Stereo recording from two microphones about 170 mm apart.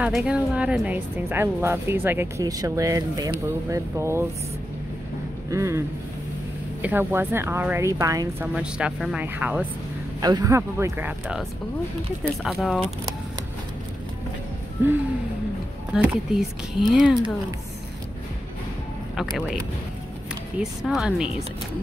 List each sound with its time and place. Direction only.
0.0 s speech: 5° right (ahead or behind)
5.5 s speech: 15° right (ahead or behind)
8.5 s speech: 5° right (ahead or behind)
10.2 s speech: 20° right (ahead or behind)
12.4 s speech: centre (ahead or behind)
15.9 s speech: 5° right (ahead or behind)
20.8 s speech: 5° right (ahead or behind)